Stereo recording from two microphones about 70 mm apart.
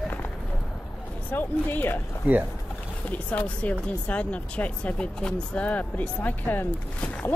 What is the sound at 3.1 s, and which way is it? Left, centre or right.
Speech, left.